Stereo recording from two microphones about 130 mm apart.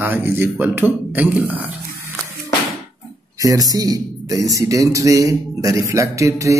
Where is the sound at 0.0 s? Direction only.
15° right (ahead or behind).